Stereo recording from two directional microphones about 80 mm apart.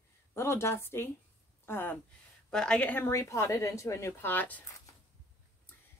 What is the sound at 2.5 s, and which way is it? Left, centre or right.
Speech, centre.